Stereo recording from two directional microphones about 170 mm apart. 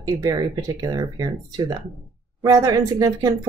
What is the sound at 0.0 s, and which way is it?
Speech, 20° right (ahead or behind).